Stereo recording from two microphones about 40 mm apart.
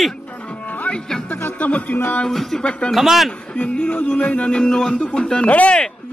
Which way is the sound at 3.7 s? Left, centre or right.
Left.